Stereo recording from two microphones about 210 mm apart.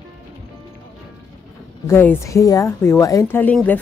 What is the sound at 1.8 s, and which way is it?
Speech, 10° left (ahead or behind).